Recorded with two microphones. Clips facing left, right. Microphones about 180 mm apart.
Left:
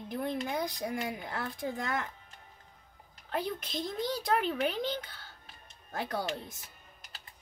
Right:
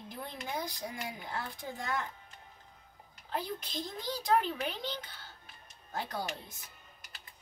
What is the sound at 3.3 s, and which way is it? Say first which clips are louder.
Speech: left 3 dB; 60° left (ahead or behind).